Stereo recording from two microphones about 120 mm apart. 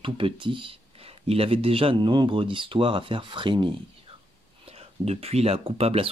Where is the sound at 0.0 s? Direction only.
45° right (ahead or behind).